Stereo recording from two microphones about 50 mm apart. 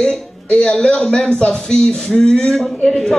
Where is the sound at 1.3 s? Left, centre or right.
Left.